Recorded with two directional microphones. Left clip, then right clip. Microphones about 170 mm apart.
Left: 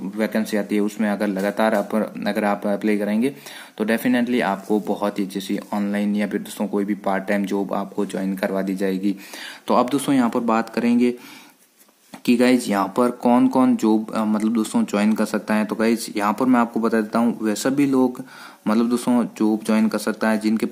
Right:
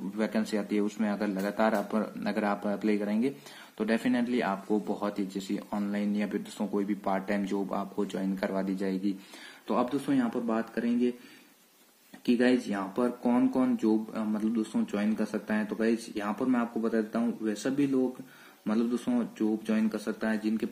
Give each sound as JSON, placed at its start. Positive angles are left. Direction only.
{"t": 0.2, "sound": "speech", "side_deg": 20}
{"t": 9.7, "sound": "speech", "side_deg": 55}
{"t": 12.3, "sound": "speech", "side_deg": 55}